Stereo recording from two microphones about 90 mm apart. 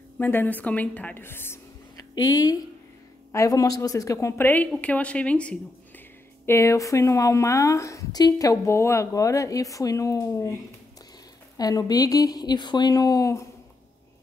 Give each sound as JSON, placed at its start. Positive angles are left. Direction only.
{"t": 0.2, "sound": "a woman's voice", "side_deg": 20}
{"t": 2.0, "sound": "a woman's voice", "side_deg": 45}
{"t": 4.5, "sound": "a woman's voice", "side_deg": 15}
{"t": 6.4, "sound": "a woman's voice", "side_deg": 30}
{"t": 11.5, "sound": "speech", "side_deg": 45}